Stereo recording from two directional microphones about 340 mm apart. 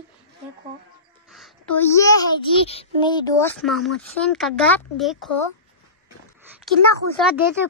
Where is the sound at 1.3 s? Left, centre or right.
Centre.